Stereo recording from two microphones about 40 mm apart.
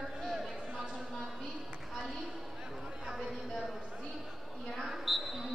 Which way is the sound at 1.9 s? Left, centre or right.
Centre.